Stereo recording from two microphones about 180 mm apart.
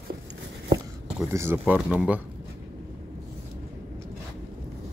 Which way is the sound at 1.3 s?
15° right (ahead or behind).